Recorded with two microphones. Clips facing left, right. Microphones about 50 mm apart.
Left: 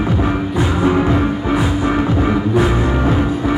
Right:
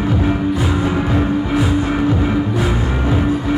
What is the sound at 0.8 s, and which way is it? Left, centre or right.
Music, centre.